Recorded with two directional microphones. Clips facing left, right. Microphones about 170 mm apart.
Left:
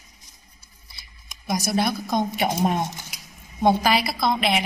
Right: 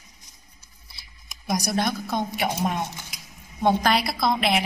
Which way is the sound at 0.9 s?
Centre (ahead or behind).